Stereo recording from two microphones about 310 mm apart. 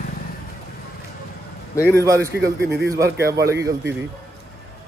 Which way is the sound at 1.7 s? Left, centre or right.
Centre.